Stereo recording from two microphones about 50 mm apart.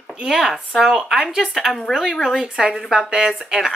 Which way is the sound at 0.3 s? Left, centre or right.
Centre.